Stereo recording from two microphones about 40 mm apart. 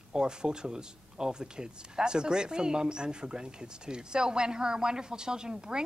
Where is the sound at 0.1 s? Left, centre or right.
Centre.